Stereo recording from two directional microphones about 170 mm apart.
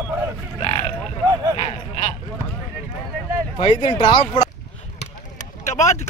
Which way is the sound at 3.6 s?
30° left (ahead or behind).